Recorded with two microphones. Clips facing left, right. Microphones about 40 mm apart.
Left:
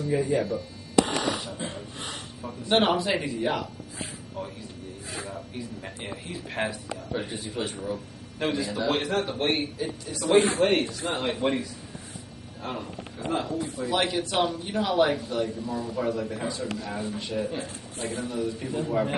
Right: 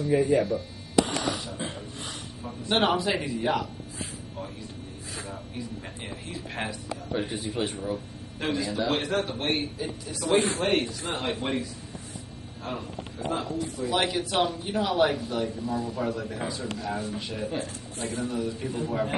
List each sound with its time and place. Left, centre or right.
0.1 s a man's voice: centre
2.0 s speech: left
2.4 s a man's voice: centre
13.3 s a man's voice: centre